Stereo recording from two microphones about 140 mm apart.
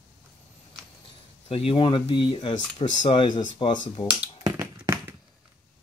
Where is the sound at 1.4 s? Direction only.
40° left (ahead or behind).